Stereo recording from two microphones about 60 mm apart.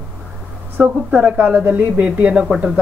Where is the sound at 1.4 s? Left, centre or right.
Right.